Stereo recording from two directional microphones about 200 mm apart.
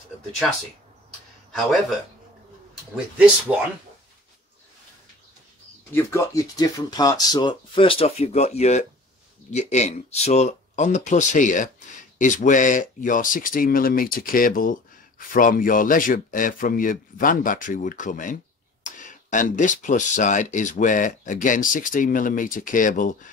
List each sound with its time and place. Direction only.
1.5 s a man's voice: centre (ahead or behind)
3.5 s speech: 5° right (ahead or behind)
5.9 s speech: 15° left (ahead or behind); by 23.3 s 40° left (ahead or behind)